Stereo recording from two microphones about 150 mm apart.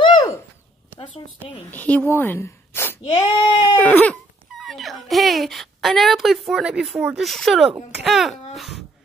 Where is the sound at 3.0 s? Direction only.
30° left (ahead or behind).